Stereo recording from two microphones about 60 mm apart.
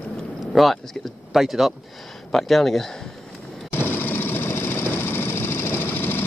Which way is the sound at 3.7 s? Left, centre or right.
Left.